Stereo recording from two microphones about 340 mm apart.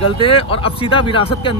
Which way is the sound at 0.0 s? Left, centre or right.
Centre.